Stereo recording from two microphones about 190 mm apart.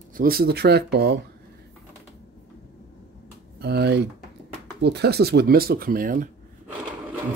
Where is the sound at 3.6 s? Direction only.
60° right (ahead or behind).